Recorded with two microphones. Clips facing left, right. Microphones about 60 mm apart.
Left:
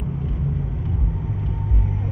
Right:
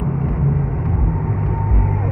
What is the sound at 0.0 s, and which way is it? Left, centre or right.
Vehicle, right.